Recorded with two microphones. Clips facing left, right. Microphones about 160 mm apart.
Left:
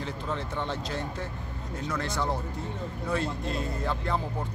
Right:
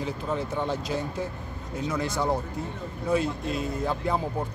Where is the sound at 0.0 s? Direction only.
10° right (ahead or behind).